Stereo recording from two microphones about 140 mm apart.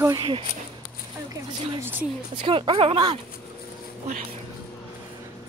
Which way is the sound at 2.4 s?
40° right (ahead or behind).